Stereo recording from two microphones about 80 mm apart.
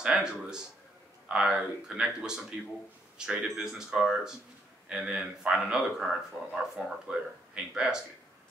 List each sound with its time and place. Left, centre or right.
0.0 s speech: centre